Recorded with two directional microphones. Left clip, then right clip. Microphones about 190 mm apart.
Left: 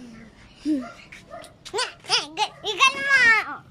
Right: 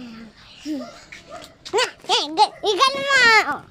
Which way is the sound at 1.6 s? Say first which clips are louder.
Right 7 dB; 25° right (ahead or behind).